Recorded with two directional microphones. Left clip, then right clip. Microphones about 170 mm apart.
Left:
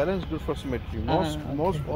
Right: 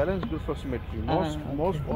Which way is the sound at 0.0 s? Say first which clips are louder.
Left 1 dB; 30° left (ahead or behind).